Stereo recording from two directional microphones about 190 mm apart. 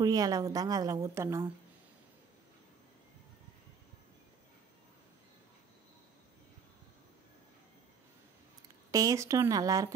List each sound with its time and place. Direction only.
0.0 s a woman's voice: 20° right (ahead or behind)
8.9 s speech: 15° right (ahead or behind)